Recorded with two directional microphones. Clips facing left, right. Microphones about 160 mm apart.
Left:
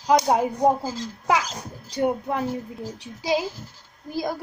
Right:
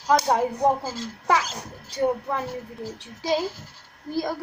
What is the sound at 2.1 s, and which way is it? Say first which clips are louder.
A child's voice: left 1 dB; 15° left (ahead or behind).